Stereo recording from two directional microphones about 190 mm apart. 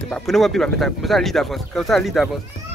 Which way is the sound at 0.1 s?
Centre (ahead or behind).